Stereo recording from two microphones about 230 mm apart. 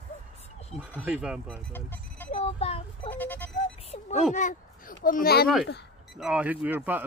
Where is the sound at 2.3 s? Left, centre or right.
Left.